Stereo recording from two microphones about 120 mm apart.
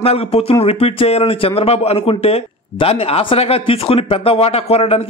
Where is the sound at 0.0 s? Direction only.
55° left (ahead or behind).